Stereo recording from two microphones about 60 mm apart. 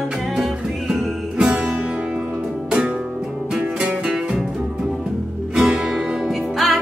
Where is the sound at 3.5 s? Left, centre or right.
Centre.